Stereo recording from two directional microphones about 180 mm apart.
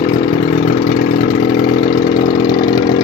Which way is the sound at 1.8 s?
25° left (ahead or behind).